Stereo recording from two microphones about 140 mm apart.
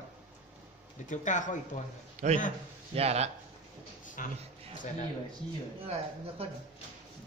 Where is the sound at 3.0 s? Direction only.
50° right (ahead or behind).